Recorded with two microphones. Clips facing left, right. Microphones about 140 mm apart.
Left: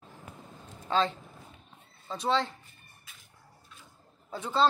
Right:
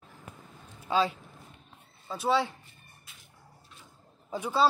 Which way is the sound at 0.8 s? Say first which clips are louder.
Right 1 dB; 10° right (ahead or behind).